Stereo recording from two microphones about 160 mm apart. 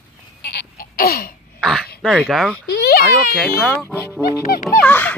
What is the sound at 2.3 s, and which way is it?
Speech, centre (ahead or behind).